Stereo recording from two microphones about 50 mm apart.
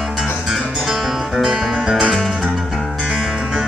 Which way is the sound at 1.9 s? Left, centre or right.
Centre.